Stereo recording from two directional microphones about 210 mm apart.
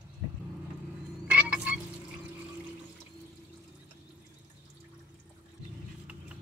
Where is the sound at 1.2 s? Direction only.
5° right (ahead or behind).